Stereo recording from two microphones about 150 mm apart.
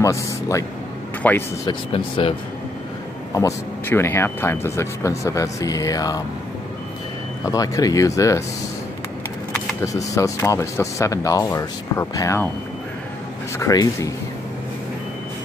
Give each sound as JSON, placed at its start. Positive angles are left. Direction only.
{"t": 0.0, "sound": "speech", "side_deg": 20}
{"t": 1.2, "sound": "speech", "side_deg": 10}
{"t": 1.7, "sound": "speech", "side_deg": 35}
{"t": 3.3, "sound": "speech", "side_deg": 20}
{"t": 7.4, "sound": "speech", "side_deg": 25}
{"t": 9.8, "sound": "speech", "side_deg": 20}
{"t": 13.6, "sound": "speech", "side_deg": 20}